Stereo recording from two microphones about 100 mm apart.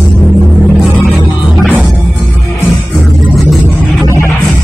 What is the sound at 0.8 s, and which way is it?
Music, centre (ahead or behind).